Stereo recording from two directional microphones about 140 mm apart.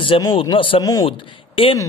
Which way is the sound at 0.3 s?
40° left (ahead or behind).